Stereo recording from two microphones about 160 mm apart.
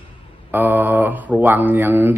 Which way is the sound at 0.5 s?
10° right (ahead or behind).